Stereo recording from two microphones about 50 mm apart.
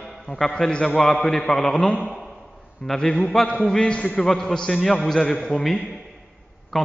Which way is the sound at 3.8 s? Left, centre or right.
Left.